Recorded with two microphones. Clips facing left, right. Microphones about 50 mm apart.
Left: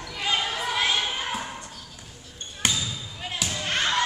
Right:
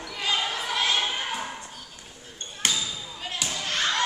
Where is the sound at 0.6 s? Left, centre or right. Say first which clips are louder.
Left 1 dB; centre.